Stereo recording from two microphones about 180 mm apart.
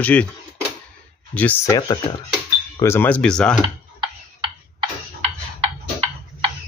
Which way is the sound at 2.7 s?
15° left (ahead or behind).